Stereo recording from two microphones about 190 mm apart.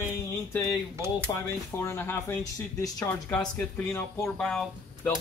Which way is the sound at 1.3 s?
15° left (ahead or behind).